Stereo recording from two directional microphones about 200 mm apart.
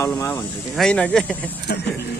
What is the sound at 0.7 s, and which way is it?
Speech, 5° left (ahead or behind).